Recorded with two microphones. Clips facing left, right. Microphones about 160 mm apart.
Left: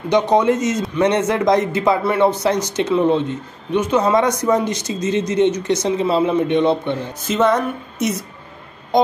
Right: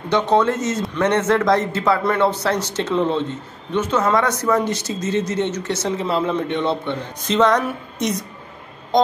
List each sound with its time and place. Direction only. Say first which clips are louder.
0.1 s a man's voice: left 2 dB; 15° left (ahead or behind)
7.2 s speech: right 1 dB; 5° left (ahead or behind)